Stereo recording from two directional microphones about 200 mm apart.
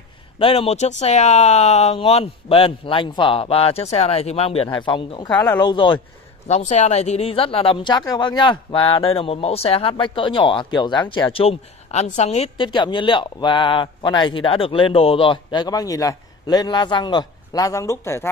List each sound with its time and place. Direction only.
0.4 s speech: 30° left (ahead or behind)
6.4 s speech: 35° left (ahead or behind); by 18.3 s 15° left (ahead or behind)